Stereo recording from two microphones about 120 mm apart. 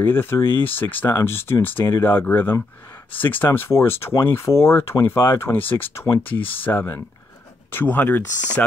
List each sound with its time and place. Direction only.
0.0 s speech: 20° left (ahead or behind)